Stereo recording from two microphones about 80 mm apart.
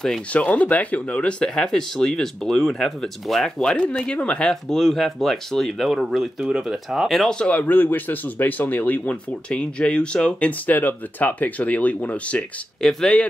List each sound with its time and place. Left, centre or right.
0.3 s speech: centre